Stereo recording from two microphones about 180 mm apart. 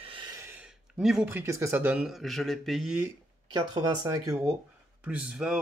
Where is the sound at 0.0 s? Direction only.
30° right (ahead or behind).